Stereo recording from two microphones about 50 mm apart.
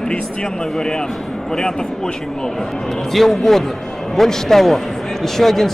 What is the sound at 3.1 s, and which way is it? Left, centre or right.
A man's voice, centre.